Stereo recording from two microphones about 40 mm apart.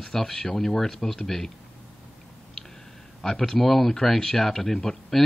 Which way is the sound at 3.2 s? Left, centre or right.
Centre.